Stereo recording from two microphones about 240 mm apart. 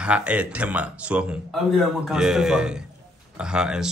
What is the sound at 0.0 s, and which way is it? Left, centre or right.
A man's voice, centre.